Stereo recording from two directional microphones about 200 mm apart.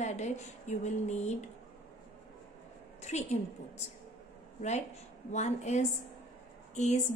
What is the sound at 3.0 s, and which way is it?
Speech, 35° left (ahead or behind).